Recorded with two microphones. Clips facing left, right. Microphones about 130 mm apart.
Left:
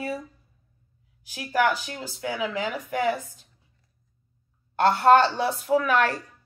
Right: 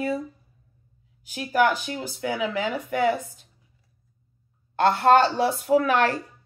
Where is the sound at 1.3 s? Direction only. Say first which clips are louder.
Right 2 dB; 25° right (ahead or behind).